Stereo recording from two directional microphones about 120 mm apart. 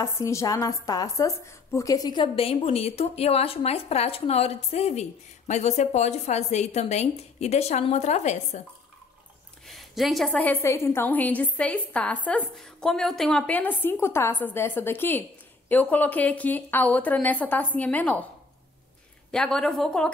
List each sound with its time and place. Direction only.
0.0 s a woman's voice: 25° left (ahead or behind); by 8.6 s 70° left (ahead or behind)
9.7 s a woman's voice: centre (ahead or behind)
13.5 s a woman's voice: 15° left (ahead or behind)
19.3 s a woman's voice: 5° left (ahead or behind)